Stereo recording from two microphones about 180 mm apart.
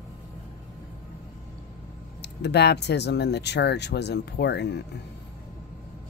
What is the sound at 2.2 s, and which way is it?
Speech, 70° left (ahead or behind).